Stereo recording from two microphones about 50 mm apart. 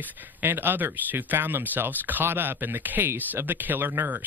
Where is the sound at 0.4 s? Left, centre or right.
Right.